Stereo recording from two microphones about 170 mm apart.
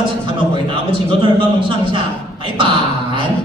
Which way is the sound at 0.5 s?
30° right (ahead or behind).